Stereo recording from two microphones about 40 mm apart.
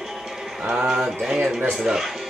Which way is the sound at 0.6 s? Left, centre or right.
Centre.